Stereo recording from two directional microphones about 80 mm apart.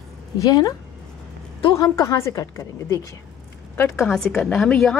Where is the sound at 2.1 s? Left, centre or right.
Left.